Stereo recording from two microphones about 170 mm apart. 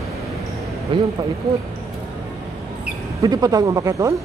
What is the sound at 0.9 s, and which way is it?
Speech, 30° right (ahead or behind).